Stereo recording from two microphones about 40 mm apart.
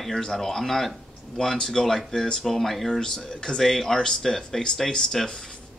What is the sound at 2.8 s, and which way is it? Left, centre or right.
Speech, centre.